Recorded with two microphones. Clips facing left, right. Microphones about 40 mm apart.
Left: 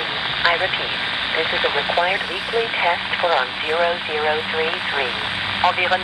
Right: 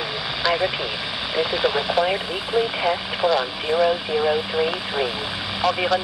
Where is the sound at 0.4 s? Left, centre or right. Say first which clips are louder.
Left 2 dB; left.